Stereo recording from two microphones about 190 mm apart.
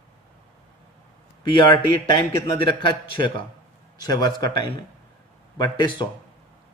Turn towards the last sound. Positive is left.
turn(degrees=25)  # may be behind; listen again after turning